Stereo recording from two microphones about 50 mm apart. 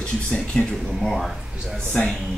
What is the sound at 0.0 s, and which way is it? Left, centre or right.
Speech, left.